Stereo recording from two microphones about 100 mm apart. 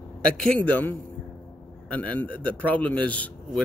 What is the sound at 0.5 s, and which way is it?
Speech, 15° left (ahead or behind).